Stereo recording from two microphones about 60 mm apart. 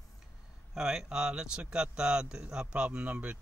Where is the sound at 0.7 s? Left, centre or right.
Centre.